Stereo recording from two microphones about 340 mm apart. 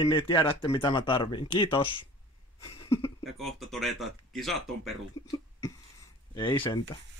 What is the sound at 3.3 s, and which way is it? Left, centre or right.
Speech, centre.